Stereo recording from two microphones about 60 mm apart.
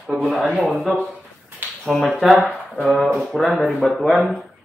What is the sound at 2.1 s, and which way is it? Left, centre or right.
Speech, centre.